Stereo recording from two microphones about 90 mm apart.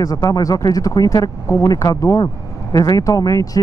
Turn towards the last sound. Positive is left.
turn(degrees=40)  # may be behind; listen again after turning